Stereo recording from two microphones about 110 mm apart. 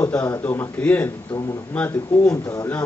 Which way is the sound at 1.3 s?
30° left (ahead or behind).